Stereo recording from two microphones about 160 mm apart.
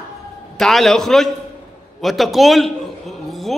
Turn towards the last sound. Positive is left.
turn(degrees=0)  # may be behind; listen again after turning